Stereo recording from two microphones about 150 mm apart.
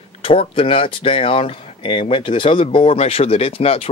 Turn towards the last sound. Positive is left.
turn(degrees=40)  # may be behind; listen again after turning